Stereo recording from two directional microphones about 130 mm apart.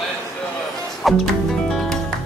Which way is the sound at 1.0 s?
Centre (ahead or behind).